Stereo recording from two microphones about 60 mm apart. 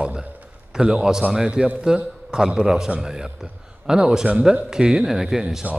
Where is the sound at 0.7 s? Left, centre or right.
Centre.